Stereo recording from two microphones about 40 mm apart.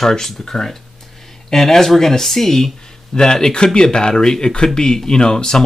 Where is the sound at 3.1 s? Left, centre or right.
Centre.